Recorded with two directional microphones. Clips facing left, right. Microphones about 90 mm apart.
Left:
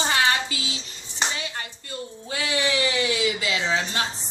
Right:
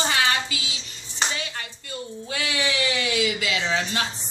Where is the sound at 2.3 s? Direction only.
30° left (ahead or behind).